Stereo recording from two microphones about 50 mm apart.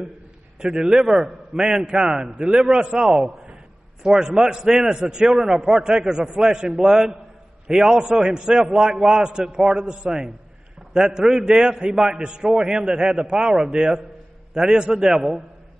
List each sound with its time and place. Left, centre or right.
0.6 s a man's voice: centre